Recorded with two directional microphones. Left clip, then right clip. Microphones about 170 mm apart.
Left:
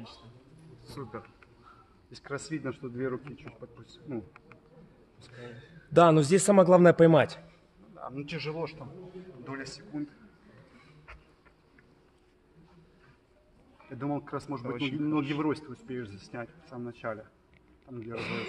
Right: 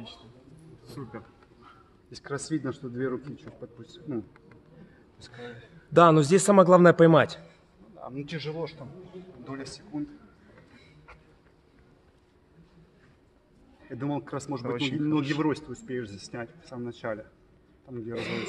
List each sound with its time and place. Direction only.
2.2 s speech: 65° right (ahead or behind)
5.3 s a man's voice: 10° left (ahead or behind)
13.9 s a man's voice: 70° right (ahead or behind)
17.9 s speech: 55° right (ahead or behind)